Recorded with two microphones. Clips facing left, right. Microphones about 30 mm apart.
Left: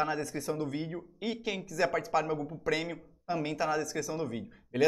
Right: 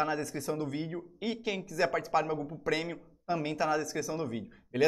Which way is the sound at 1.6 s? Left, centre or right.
Centre.